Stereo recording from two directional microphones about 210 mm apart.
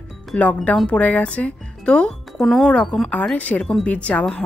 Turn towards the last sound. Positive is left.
turn(degrees=5)  # may be behind; listen again after turning